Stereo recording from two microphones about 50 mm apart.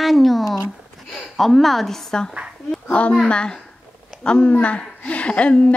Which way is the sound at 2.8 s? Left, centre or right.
Left.